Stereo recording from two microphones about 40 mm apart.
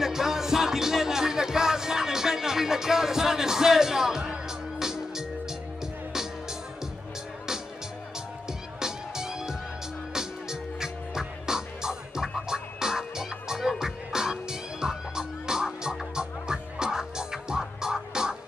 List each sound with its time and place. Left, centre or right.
0.0 s music: centre
8.7 s music: centre